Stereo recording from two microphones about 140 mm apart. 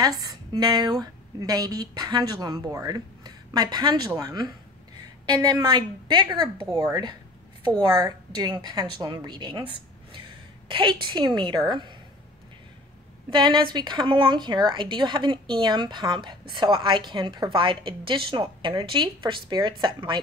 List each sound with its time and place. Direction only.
0.0 s a woman's voice: 30° right (ahead or behind)
6.7 s a woman's voice: 25° right (ahead or behind)
13.3 s a woman's voice: 30° right (ahead or behind)